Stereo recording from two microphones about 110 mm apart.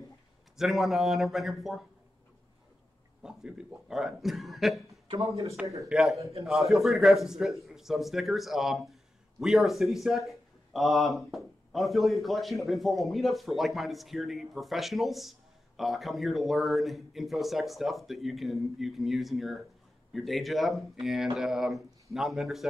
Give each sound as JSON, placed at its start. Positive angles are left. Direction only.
{"t": 0.6, "sound": "a man's voice", "side_deg": 0}
{"t": 3.2, "sound": "a man's voice", "side_deg": -5}
{"t": 5.9, "sound": "a man's voice", "side_deg": -5}
{"t": 6.1, "sound": "a man's voice", "side_deg": -30}
{"t": 6.4, "sound": "a man's voice", "side_deg": 0}